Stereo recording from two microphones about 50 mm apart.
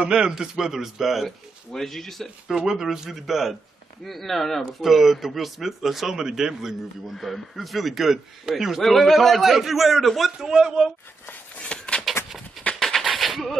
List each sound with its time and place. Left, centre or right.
0.0 s a man's voice: centre
2.4 s a man's voice: centre
7.2 s a man's voice: centre
10.5 s a man's voice: centre
11.2 s a sound: left
12.3 s a sound: centre